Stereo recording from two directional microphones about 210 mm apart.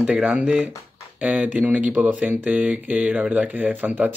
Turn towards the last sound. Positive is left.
turn(degrees=-10)  # may be behind; listen again after turning